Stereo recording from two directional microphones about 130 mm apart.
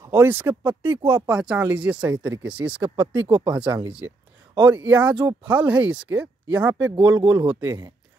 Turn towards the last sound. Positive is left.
turn(degrees=-30)  # may be behind; listen again after turning